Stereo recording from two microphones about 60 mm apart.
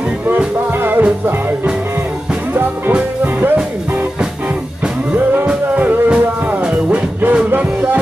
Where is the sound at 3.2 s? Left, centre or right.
Right.